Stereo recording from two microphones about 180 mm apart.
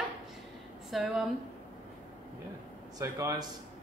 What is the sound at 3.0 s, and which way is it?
Speech, 20° right (ahead or behind).